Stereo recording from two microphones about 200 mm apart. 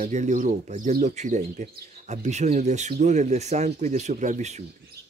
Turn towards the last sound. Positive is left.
turn(degrees=-35)  # may be behind; listen again after turning